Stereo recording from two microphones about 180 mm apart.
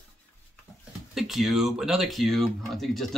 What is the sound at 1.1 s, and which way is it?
Speech, centre (ahead or behind).